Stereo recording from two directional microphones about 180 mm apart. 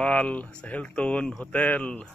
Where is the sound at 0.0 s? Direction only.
5° left (ahead or behind).